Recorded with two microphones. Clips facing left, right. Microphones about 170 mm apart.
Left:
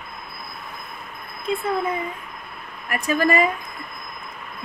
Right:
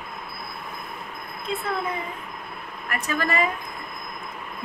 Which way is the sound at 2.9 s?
15° left (ahead or behind).